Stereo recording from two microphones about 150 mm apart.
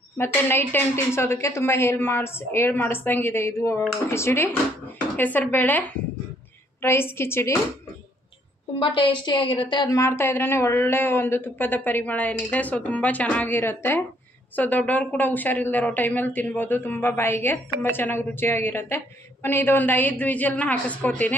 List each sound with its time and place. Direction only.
0.2 s speech: 15° left (ahead or behind)
8.7 s speech: 35° left (ahead or behind); by 21.4 s 10° left (ahead or behind)